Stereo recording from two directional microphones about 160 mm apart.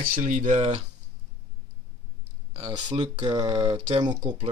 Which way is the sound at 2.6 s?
30° right (ahead or behind).